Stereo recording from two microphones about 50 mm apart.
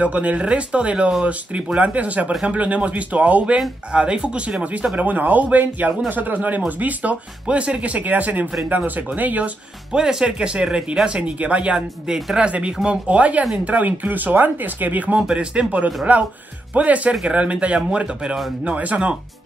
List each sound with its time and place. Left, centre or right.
0.0 s speech: right
9.9 s speech: centre; by 15.1 s right
15.1 s speech: centre
17.1 s speech: centre
17.4 s speech: right
18.6 s speech: right